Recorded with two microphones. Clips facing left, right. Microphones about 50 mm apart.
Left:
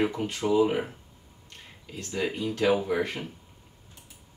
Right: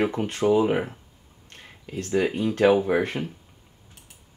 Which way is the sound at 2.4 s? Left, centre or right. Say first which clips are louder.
Right 5 dB; right.